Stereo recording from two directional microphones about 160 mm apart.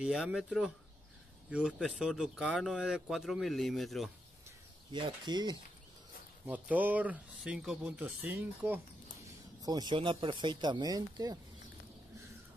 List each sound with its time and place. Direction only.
0.0 s speech: centre (ahead or behind)
1.8 s speech: 5° right (ahead or behind)
4.9 s speech: 30° right (ahead or behind)
6.4 s speech: 10° right (ahead or behind)
9.6 s speech: 25° right (ahead or behind)